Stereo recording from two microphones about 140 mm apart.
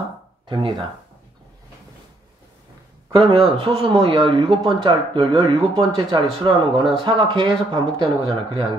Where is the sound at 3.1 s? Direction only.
40° right (ahead or behind).